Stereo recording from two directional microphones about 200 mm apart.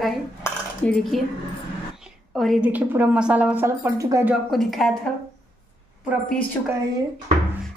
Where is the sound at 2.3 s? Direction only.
Centre (ahead or behind).